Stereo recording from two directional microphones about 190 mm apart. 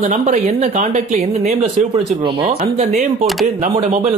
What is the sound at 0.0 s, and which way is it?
Speech, 40° right (ahead or behind).